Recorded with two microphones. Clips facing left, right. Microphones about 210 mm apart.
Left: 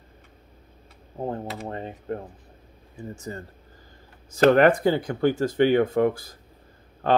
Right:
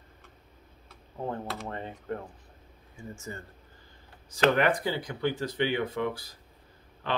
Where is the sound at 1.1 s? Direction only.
35° left (ahead or behind).